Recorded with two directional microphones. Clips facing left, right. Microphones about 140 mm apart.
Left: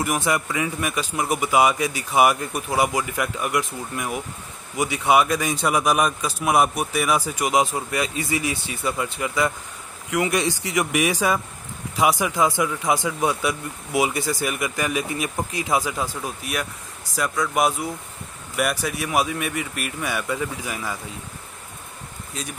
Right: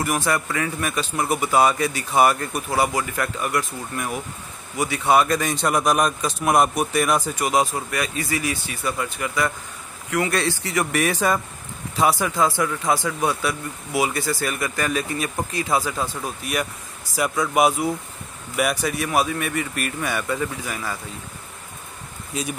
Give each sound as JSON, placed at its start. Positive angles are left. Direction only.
{"t": 0.0, "sound": "speech", "side_deg": 15}
{"t": 16.2, "sound": "speech", "side_deg": 0}
{"t": 22.3, "sound": "speech", "side_deg": -5}